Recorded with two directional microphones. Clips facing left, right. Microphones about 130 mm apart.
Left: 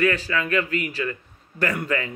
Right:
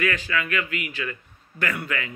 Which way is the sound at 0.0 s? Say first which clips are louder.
Left 3 dB; 35° left (ahead or behind).